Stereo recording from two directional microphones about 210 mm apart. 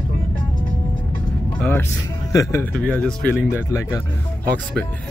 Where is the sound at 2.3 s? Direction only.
15° left (ahead or behind).